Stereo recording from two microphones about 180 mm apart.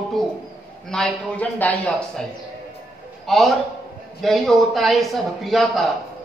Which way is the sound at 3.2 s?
Centre (ahead or behind).